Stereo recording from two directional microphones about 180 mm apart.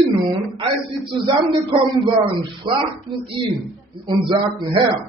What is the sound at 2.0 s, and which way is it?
A woman's voice, 30° right (ahead or behind).